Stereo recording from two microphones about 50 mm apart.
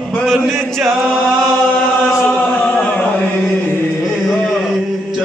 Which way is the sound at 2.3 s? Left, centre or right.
Left.